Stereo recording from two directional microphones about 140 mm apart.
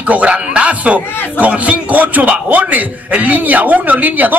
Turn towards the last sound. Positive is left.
turn(degrees=-10)  # may be behind; listen again after turning